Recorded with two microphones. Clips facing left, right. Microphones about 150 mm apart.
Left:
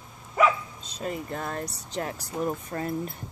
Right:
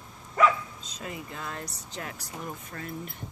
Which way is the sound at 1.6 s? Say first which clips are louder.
Left 6 dB; 35° left (ahead or behind).